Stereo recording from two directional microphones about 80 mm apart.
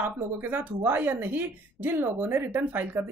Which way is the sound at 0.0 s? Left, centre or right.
Right.